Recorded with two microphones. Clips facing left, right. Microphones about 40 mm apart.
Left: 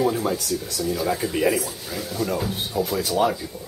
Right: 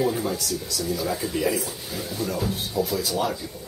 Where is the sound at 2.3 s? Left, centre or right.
Centre.